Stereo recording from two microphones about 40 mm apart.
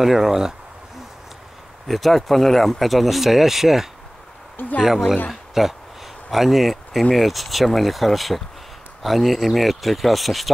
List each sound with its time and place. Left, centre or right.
0.0 s speech: centre
1.9 s speech: centre